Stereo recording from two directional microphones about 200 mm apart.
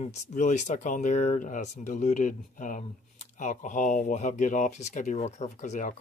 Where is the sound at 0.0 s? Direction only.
35° left (ahead or behind).